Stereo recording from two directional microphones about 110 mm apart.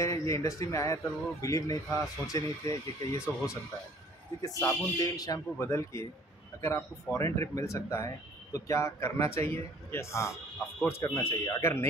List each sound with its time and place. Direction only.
0.0 s a man's voice: 30° left (ahead or behind)